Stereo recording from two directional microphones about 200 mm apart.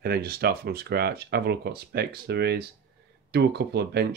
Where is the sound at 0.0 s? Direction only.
50° right (ahead or behind).